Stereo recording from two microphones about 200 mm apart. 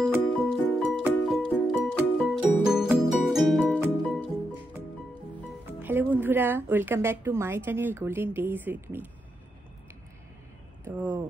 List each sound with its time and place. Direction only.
0.0 s music: 5° right (ahead or behind)
5.8 s a woman's voice: 10° right (ahead or behind)
10.8 s speech: 15° right (ahead or behind)